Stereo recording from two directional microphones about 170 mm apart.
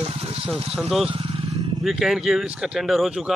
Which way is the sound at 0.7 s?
Centre (ahead or behind).